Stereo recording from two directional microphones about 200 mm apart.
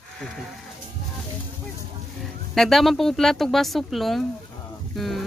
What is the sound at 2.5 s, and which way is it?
Speech, centre (ahead or behind).